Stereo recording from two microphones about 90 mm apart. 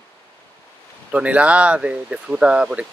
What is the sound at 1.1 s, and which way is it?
Speech, 15° right (ahead or behind).